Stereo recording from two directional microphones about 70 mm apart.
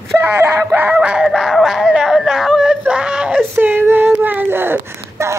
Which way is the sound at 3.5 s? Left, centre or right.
Right.